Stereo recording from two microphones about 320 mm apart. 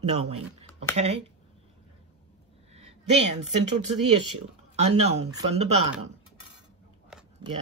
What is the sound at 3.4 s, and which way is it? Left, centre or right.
Speech, right.